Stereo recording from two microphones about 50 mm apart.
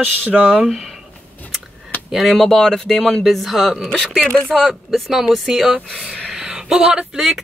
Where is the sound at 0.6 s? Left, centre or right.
Centre.